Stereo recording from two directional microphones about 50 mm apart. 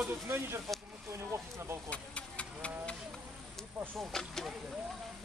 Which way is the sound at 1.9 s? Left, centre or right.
Left.